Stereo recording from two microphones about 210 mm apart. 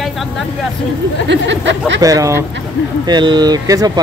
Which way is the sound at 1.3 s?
55° right (ahead or behind).